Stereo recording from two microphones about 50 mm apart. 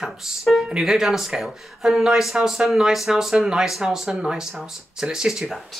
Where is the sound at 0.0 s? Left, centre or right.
Centre.